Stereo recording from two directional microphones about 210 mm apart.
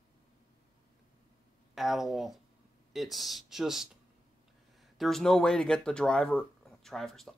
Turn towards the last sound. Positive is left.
turn(degrees=0)  # may be behind; listen again after turning